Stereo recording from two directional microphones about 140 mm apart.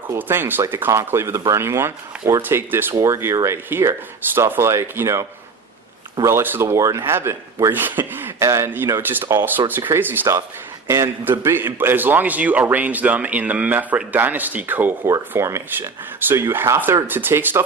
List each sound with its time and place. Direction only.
0.1 s a man's voice: 15° right (ahead or behind)
6.2 s a man's voice: 15° right (ahead or behind)